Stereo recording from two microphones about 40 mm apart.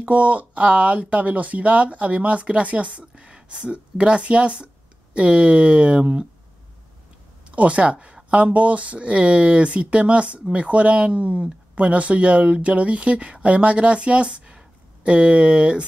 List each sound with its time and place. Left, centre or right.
0.0 s speech: right
3.2 s speech: right
7.5 s speech: right